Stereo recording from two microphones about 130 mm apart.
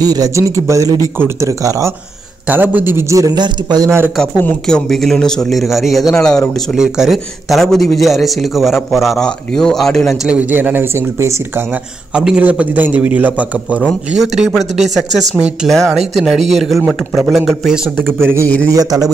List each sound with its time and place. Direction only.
0.0 s a man's voice: 30° right (ahead or behind)
2.4 s a man's voice: 15° right (ahead or behind); by 3.9 s 35° right (ahead or behind)
4.2 s a man's voice: 10° left (ahead or behind)
10.2 s a man's voice: 10° right (ahead or behind)
12.1 s a man's voice: 5° right (ahead or behind)
16.8 s a man's voice: 10° right (ahead or behind)
17.3 s a man's voice: centre (ahead or behind)
18.2 s a man's voice: 20° right (ahead or behind)